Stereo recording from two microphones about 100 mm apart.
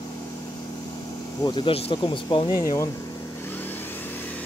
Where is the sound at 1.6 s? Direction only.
65° left (ahead or behind).